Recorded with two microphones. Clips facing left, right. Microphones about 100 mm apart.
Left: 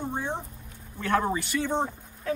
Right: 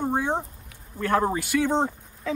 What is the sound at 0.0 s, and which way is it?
Speech, 55° right (ahead or behind).